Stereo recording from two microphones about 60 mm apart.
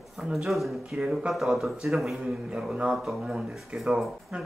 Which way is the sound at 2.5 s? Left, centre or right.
Centre.